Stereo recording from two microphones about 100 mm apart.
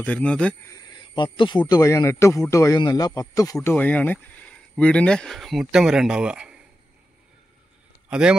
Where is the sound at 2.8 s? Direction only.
40° left (ahead or behind).